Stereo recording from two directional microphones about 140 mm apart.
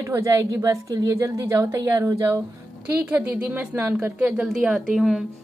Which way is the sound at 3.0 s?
10° right (ahead or behind).